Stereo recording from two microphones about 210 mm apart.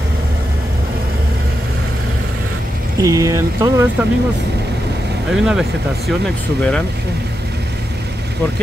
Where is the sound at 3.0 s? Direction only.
15° right (ahead or behind).